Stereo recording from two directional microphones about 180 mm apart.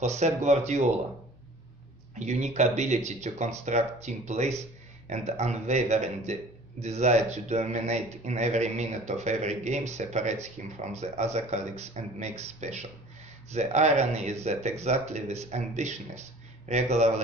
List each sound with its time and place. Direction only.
0.0 s speech: 40° right (ahead or behind)
2.1 s speech: 40° right (ahead or behind)